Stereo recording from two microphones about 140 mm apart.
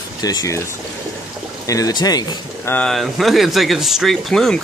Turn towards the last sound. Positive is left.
turn(degrees=5)  # may be behind; listen again after turning